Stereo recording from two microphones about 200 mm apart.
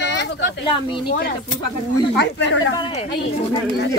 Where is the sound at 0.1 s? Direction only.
60° left (ahead or behind).